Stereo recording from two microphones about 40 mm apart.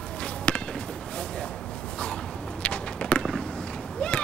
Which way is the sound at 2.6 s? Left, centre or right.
Left.